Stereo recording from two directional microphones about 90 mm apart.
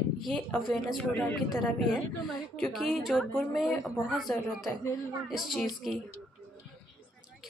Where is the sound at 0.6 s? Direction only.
Centre (ahead or behind).